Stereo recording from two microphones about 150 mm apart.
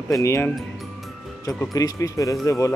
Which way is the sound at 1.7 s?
25° left (ahead or behind).